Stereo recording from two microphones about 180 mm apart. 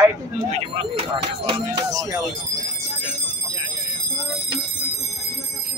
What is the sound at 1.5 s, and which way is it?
Speech, 20° right (ahead or behind).